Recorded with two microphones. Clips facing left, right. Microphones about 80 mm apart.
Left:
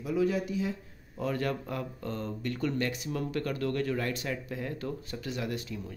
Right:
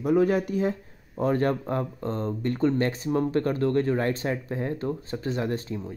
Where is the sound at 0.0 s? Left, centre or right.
Right.